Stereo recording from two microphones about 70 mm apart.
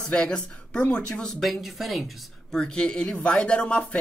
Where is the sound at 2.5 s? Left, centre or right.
Centre.